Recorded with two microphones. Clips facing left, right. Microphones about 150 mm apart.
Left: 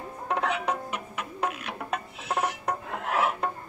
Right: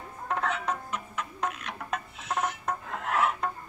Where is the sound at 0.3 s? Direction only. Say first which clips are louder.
Left 2 dB; 15° left (ahead or behind).